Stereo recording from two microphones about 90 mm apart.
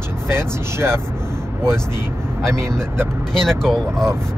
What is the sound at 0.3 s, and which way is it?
Speech, 30° right (ahead or behind).